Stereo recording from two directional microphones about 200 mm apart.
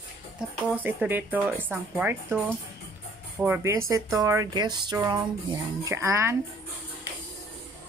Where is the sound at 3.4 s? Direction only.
10° right (ahead or behind).